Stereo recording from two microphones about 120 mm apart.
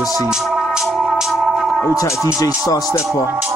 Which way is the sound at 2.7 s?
30° left (ahead or behind).